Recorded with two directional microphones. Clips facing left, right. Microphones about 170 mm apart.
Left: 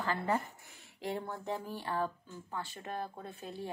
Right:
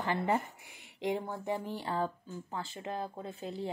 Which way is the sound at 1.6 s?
25° right (ahead or behind).